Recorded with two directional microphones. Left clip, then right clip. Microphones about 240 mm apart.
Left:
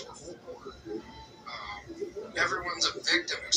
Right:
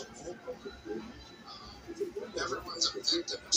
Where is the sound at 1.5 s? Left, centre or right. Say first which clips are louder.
Left 10 dB; centre.